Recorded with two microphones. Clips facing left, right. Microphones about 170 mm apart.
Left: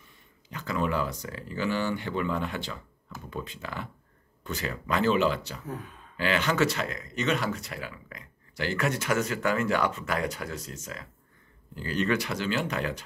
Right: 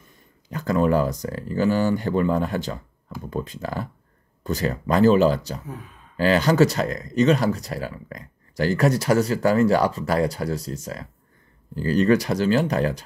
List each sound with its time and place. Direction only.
0.5 s speech: 40° right (ahead or behind)
5.7 s speech: centre (ahead or behind)
6.1 s speech: 35° right (ahead or behind)